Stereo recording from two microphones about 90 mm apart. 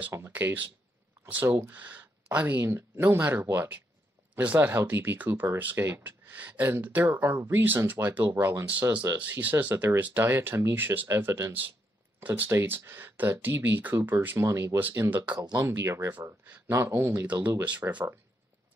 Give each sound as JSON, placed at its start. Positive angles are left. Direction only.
{"t": 0.3, "sound": "speech", "side_deg": -20}
{"t": 14.8, "sound": "speech", "side_deg": -20}
{"t": 15.3, "sound": "speech", "side_deg": -50}
{"t": 15.6, "sound": "speech", "side_deg": -30}
{"t": 17.4, "sound": "speech", "side_deg": -20}